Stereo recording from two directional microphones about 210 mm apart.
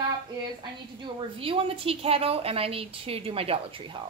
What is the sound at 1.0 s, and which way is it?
A woman's voice, 25° right (ahead or behind).